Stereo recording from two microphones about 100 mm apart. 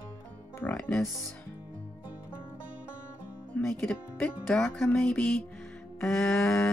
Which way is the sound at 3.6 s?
15° left (ahead or behind).